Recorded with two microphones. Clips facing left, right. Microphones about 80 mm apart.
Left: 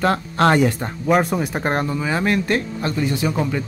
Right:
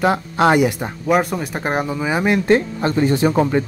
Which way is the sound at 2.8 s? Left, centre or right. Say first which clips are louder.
Right 5 dB; right.